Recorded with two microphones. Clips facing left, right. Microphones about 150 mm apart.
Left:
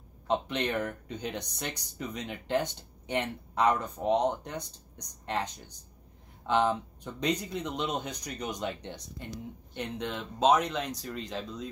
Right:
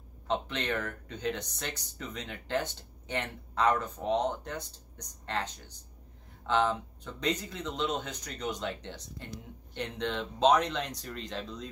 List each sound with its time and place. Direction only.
0.3 s speech: 15° left (ahead or behind)